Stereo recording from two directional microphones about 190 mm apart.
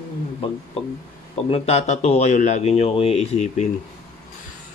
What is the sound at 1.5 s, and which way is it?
Speech, 35° left (ahead or behind).